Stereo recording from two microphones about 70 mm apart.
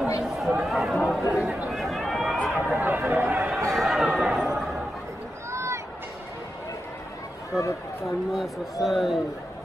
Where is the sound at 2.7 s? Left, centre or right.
Right.